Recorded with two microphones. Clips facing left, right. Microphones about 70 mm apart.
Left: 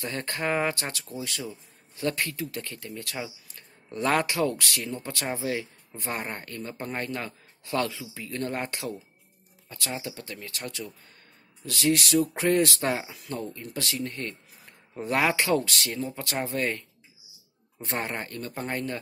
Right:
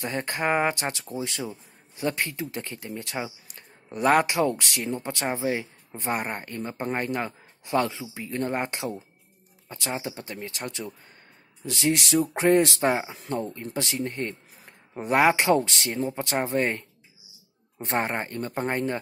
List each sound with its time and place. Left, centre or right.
0.0 s speech: right